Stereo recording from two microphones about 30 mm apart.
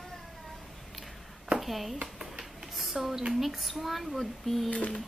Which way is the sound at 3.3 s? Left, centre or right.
Centre.